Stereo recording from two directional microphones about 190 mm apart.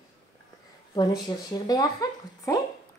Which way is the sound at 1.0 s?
20° left (ahead or behind).